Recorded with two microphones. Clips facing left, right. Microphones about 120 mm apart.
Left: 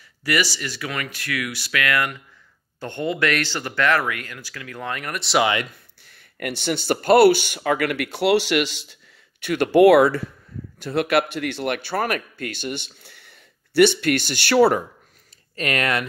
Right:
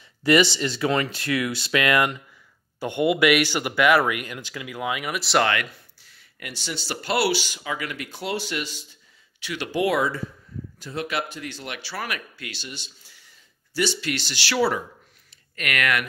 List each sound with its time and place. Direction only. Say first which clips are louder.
0.2 s speech: right 5 dB; 25° right (ahead or behind); by 5.4 s centre (ahead or behind)
6.0 s speech: left 10 dB; 55° left (ahead or behind); by 8.9 s 75° left (ahead or behind)
9.4 s speech: left 11 dB; 55° left (ahead or behind)
15.5 s speech: left 2 dB; 30° left (ahead or behind)